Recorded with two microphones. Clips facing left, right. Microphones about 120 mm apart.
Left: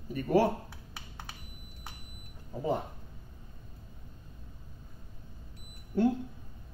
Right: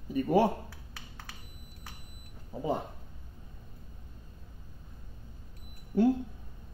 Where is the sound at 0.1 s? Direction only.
15° right (ahead or behind).